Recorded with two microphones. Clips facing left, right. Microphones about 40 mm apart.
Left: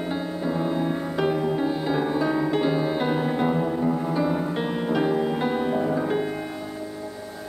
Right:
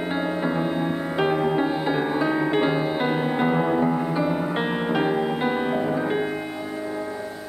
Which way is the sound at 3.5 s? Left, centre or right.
Right.